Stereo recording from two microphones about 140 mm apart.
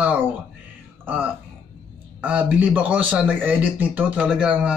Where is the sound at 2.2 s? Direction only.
10° right (ahead or behind).